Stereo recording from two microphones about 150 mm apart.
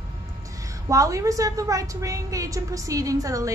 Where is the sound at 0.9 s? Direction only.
20° right (ahead or behind).